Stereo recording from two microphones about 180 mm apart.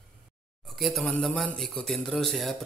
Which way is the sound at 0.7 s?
Centre (ahead or behind).